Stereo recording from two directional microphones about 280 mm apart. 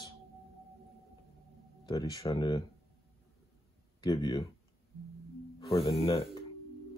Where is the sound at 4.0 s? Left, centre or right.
Centre.